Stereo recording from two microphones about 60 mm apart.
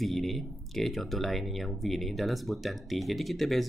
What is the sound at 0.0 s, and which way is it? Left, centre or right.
Speech, centre.